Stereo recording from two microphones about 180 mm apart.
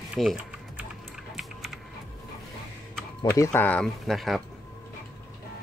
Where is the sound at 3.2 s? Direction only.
15° left (ahead or behind).